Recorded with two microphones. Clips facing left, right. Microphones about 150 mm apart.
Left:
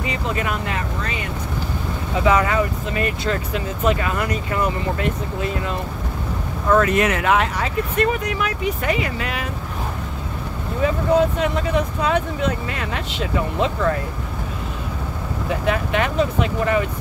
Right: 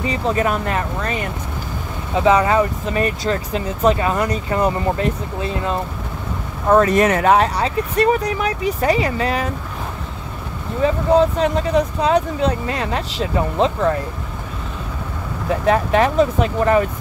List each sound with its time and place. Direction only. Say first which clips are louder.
0.0 s speech: right 5 dB; 35° right (ahead or behind)
2.1 s speech: right 4 dB; 30° right (ahead or behind)
10.8 s speech: right 3 dB; 35° right (ahead or behind)
15.6 s speech: right 6 dB; 35° right (ahead or behind)